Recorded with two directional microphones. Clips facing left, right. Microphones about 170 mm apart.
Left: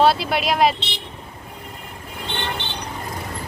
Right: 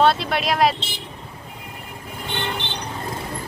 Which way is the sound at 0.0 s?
5° left (ahead or behind).